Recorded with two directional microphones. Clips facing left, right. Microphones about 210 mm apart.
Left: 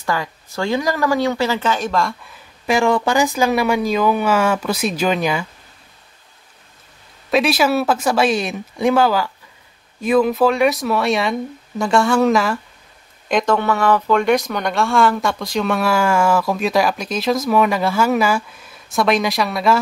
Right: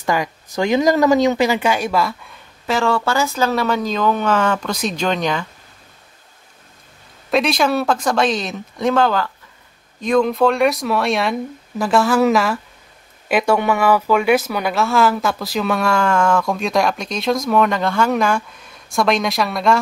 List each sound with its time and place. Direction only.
0.0 s speech: 15° right (ahead or behind); by 2.4 s centre (ahead or behind)
2.6 s speech: 15° left (ahead or behind)
7.2 s speech: 5° left (ahead or behind)